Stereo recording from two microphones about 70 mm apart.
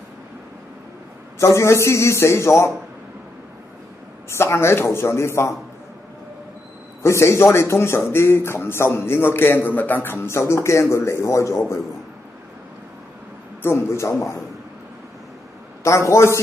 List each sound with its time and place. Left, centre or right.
1.4 s speech: left
4.3 s speech: left
7.0 s speech: left
10.1 s speech: left
13.7 s speech: left
15.8 s a man's voice: left